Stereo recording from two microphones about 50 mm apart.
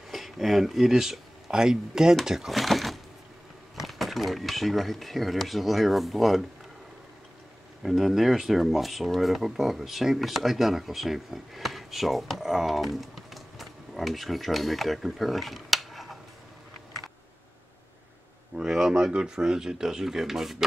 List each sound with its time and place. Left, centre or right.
0.1 s speech: centre
7.8 s speech: centre
18.6 s speech: centre